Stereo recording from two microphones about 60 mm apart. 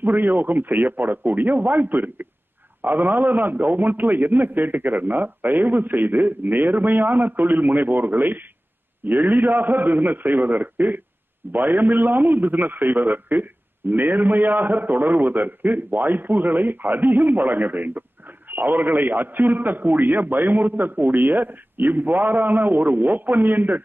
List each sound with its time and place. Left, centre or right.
0.0 s a man's voice: right